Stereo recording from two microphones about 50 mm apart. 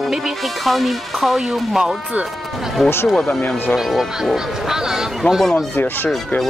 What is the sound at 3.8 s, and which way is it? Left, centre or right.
Speech, centre.